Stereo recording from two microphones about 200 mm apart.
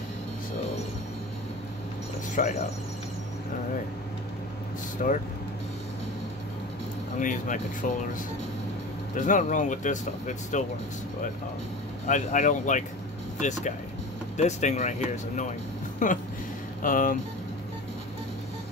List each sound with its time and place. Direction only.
2.4 s speech: 45° left (ahead or behind)
5.0 s speech: 45° left (ahead or behind)
7.2 s speech: 40° left (ahead or behind)
9.1 s speech: 40° left (ahead or behind)
12.1 s speech: 40° left (ahead or behind)